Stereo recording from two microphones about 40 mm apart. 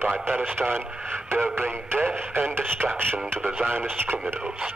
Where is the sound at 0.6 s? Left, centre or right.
Right.